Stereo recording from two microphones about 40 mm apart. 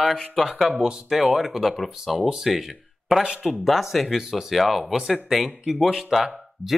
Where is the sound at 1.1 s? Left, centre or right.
Centre.